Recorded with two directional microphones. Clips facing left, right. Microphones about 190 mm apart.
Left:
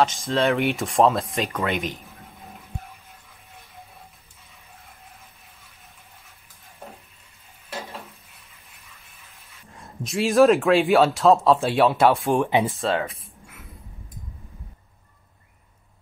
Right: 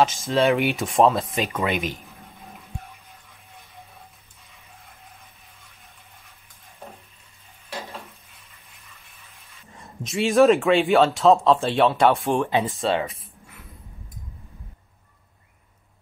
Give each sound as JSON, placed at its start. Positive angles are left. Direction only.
{"t": 0.0, "sound": "speech", "side_deg": -5}
{"t": 9.7, "sound": "speech", "side_deg": 0}
{"t": 12.4, "sound": "speech", "side_deg": 15}
{"t": 12.6, "sound": "speech", "side_deg": 0}